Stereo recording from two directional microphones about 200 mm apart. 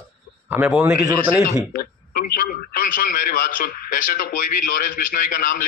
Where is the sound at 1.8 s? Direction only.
50° left (ahead or behind).